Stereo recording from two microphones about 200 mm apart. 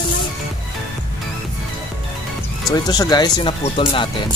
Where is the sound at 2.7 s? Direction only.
20° left (ahead or behind).